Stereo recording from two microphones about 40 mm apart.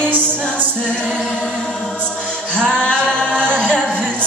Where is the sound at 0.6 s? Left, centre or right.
Left.